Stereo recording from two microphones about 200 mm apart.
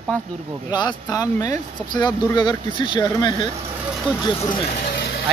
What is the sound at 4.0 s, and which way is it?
Speech, 5° right (ahead or behind).